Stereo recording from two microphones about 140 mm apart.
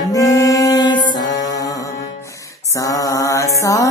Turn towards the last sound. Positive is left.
turn(degrees=25)  # may be behind; listen again after turning